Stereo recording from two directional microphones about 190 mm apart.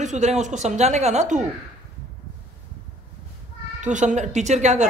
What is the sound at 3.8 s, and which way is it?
A man's voice, 40° right (ahead or behind).